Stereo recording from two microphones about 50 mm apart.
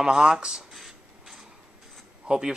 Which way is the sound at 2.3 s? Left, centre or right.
Right.